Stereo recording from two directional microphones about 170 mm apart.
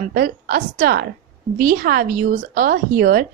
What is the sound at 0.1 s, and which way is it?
A woman's voice, 60° right (ahead or behind).